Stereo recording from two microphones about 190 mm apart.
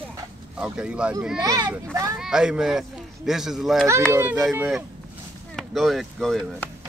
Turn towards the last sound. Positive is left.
turn(degrees=0)  # may be behind; listen again after turning